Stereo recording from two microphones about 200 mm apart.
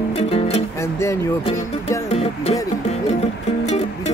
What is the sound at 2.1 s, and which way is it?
Music, 30° left (ahead or behind).